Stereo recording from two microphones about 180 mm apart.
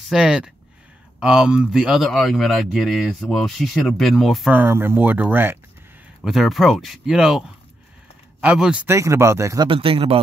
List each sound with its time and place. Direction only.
0.1 s speech: 5° right (ahead or behind)
9.7 s speech: 30° right (ahead or behind)